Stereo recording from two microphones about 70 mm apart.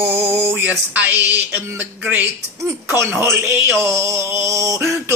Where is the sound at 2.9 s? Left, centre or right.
Right.